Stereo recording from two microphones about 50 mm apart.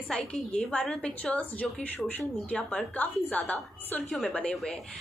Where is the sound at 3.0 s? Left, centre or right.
Left.